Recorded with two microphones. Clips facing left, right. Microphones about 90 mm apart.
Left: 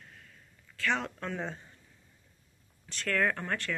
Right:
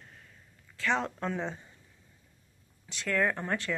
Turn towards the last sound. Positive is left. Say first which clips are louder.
# right 1 dB
turn(degrees=-20)  # may be behind; listen again after turning